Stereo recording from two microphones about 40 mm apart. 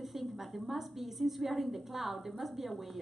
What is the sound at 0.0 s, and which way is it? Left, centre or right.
A woman's voice, centre.